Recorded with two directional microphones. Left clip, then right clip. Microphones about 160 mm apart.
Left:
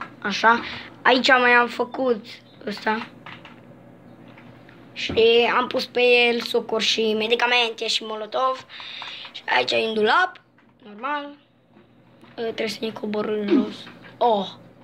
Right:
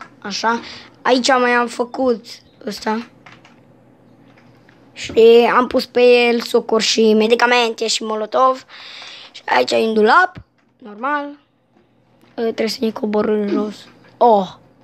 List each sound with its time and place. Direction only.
0.2 s a woman's voice: 20° right (ahead or behind); by 3.1 s 40° right (ahead or behind)
5.0 s speech: 50° right (ahead or behind)
12.4 s speech: 55° right (ahead or behind)